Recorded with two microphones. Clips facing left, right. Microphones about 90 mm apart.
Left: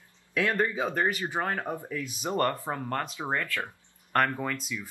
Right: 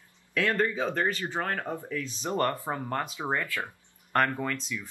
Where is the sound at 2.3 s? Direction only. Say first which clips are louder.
Even; centre (ahead or behind).